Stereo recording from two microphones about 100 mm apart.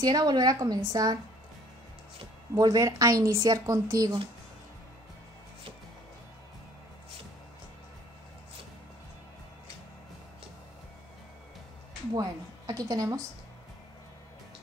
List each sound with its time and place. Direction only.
0.0 s a woman's voice: 40° right (ahead or behind)
2.5 s a woman's voice: 40° right (ahead or behind)
12.2 s a woman's voice: 40° right (ahead or behind)